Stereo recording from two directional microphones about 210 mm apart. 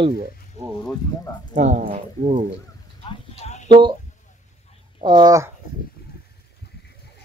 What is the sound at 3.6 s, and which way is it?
Speech, 20° right (ahead or behind).